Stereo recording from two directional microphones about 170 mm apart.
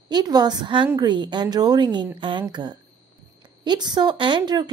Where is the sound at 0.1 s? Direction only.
25° right (ahead or behind).